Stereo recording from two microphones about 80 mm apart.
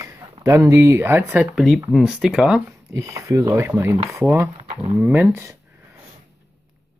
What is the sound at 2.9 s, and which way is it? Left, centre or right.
Speech, right.